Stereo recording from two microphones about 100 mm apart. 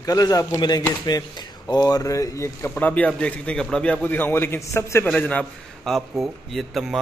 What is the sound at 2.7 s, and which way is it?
A man's voice, 15° left (ahead or behind).